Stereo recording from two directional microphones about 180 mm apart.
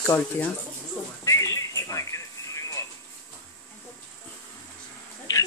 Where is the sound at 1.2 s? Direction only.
15° left (ahead or behind).